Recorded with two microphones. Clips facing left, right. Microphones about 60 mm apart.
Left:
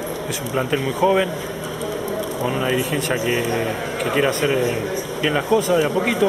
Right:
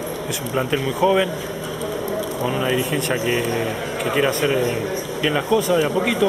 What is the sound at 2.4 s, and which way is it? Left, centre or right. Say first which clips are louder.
Speech: even; centre.